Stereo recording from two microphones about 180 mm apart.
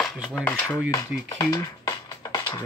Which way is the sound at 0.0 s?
Centre (ahead or behind).